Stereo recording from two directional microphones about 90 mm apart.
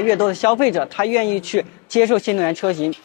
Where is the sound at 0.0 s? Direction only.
25° left (ahead or behind).